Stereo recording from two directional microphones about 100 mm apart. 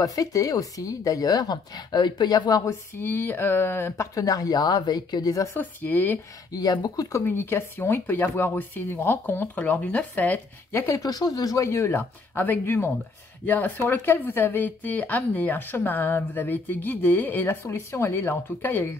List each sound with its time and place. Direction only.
0.0 s speech: 35° left (ahead or behind)
3.0 s speech: 20° left (ahead or behind)
5.6 s speech: 20° left (ahead or behind)
6.5 s speech: 40° left (ahead or behind)
7.2 s speech: 20° left (ahead or behind)
10.7 s speech: 25° left (ahead or behind)
11.1 s speech: 40° left (ahead or behind); by 18.9 s 20° left (ahead or behind)